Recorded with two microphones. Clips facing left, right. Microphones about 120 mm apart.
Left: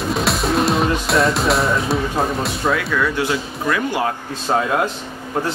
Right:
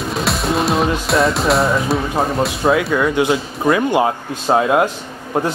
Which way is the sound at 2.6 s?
25° right (ahead or behind).